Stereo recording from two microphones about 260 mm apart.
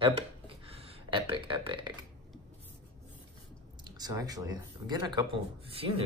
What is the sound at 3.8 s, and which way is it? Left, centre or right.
Speech, centre.